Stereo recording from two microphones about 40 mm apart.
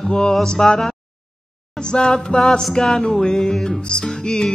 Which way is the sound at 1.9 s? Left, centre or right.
Centre.